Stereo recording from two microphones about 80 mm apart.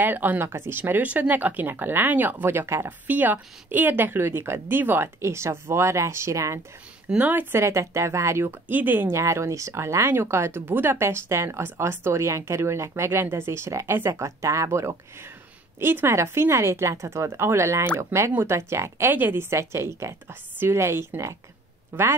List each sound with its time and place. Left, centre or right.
0.0 s speech: right
3.1 s speech: right
7.1 s speech: right
7.5 s speech: right
9.1 s speech: right
15.8 s speech: right
19.5 s speech: right